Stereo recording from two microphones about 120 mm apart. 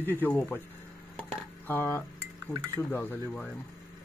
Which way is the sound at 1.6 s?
20° left (ahead or behind).